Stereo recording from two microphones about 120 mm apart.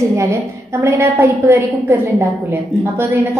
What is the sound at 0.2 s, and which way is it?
A woman's voice, 25° right (ahead or behind).